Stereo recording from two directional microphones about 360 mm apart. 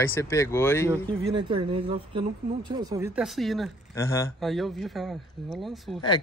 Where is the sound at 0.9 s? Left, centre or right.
Centre.